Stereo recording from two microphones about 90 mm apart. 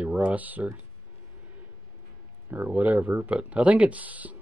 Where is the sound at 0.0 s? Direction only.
15° right (ahead or behind).